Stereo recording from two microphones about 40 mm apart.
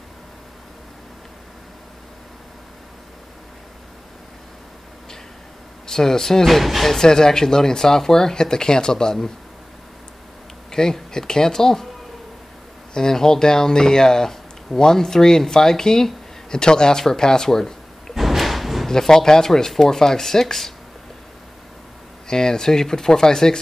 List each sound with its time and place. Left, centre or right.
5.9 s speech: centre
6.4 s speech: centre
7.0 s speech: centre
10.7 s speech: centre
12.9 s speech: centre
18.1 s slam: centre
18.9 s speech: centre
22.3 s speech: centre